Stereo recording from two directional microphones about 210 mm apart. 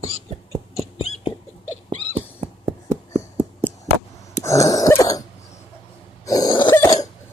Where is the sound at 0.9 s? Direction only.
30° left (ahead or behind).